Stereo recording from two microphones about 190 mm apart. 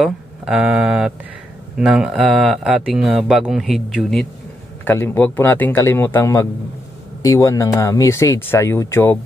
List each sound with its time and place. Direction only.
0.0 s speech: 5° right (ahead or behind)
4.8 s speech: 10° left (ahead or behind)